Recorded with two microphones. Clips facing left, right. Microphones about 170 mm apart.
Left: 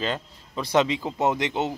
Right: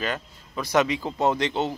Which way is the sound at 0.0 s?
25° left (ahead or behind).